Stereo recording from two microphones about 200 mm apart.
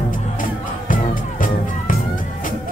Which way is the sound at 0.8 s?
40° left (ahead or behind).